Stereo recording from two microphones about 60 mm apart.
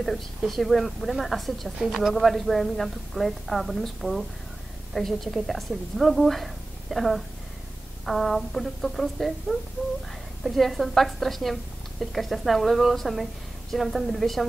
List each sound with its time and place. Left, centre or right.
0.0 s a woman's voice: centre